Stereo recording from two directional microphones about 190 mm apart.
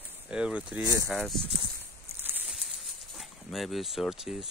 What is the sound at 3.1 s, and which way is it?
Speech, centre (ahead or behind).